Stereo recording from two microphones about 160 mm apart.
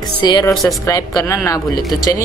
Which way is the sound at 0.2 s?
25° left (ahead or behind).